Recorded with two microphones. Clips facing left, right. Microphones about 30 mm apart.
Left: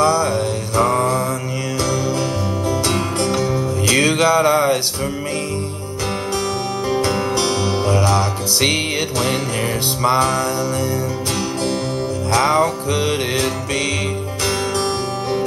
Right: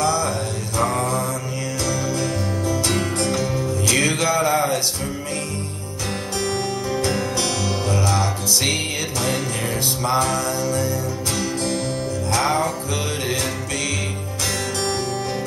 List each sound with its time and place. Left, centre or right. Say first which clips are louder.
0.0 s music: left 5 dB; left
0.8 s mantra: left 5 dB; centre
3.2 s music: left 3 dB; left
4.5 s music: left 5 dB; left
7.1 s music: left 4 dB; left
10.0 s music: left 5 dB; left
12.3 s music: left 5 dB; left